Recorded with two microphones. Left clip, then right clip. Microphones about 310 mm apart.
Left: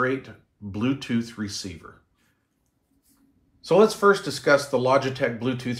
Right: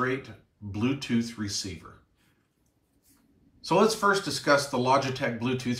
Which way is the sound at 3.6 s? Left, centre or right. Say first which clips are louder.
Left 5 dB; centre.